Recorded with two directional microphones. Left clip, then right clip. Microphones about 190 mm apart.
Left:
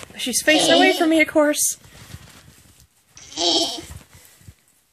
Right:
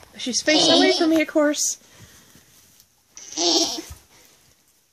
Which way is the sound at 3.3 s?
5° left (ahead or behind).